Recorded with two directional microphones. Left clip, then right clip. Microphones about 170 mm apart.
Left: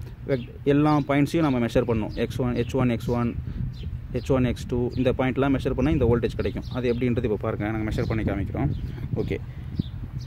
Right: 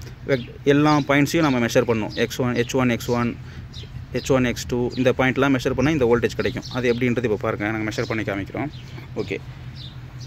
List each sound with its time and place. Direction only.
0.3 s speech: centre (ahead or behind)
9.1 s speech: 20° left (ahead or behind)